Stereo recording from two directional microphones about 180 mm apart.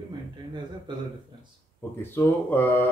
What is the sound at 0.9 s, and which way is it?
Speech, 25° right (ahead or behind).